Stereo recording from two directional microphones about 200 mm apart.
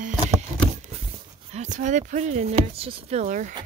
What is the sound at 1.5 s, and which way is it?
Speech, 35° right (ahead or behind).